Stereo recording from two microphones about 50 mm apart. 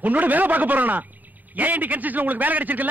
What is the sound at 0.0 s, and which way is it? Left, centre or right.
A man's voice, right.